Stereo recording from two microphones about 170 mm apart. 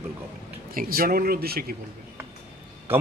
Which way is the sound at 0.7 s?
60° right (ahead or behind).